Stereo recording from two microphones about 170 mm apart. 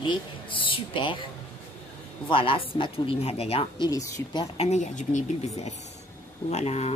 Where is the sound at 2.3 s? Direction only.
30° left (ahead or behind).